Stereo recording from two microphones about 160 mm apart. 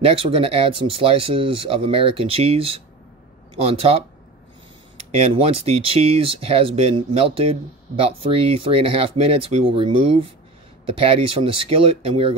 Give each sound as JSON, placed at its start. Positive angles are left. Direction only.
{"t": 0.0, "sound": "speech", "side_deg": -35}
{"t": 5.1, "sound": "speech", "side_deg": -40}